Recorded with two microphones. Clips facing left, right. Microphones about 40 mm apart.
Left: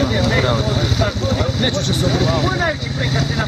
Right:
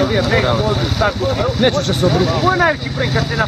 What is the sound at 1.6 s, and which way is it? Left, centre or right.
Speech, right.